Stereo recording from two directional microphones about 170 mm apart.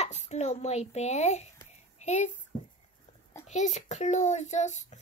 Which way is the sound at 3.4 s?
45° left (ahead or behind).